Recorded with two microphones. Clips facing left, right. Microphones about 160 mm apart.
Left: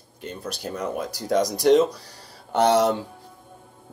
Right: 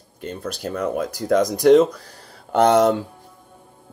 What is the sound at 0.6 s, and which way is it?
A man's voice, 55° right (ahead or behind).